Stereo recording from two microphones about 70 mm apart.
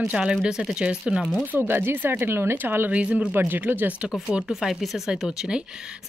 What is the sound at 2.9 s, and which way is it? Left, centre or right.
Speech, centre.